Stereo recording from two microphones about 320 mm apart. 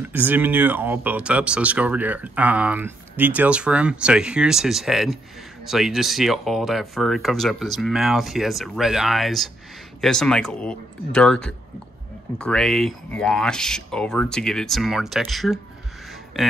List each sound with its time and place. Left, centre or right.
0.1 s speech: centre